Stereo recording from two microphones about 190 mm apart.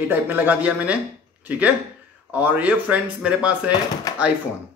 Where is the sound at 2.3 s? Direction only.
10° right (ahead or behind).